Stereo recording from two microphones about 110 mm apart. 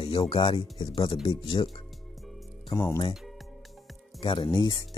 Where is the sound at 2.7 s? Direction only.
30° left (ahead or behind).